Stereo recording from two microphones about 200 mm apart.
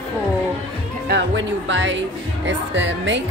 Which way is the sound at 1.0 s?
65° right (ahead or behind).